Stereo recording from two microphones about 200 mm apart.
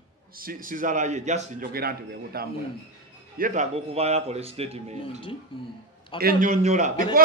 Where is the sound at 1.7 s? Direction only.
50° right (ahead or behind).